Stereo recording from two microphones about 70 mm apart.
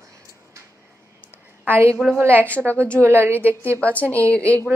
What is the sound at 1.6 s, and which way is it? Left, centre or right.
A woman's voice, right.